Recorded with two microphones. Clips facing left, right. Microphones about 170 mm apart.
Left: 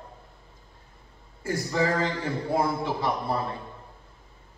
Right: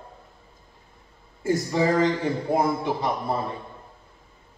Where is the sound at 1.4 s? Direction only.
20° right (ahead or behind).